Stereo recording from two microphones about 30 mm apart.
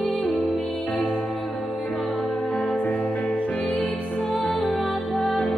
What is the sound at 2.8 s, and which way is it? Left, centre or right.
Music, left.